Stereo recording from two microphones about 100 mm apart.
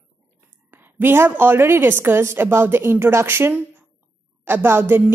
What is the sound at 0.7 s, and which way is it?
Speech, 20° right (ahead or behind).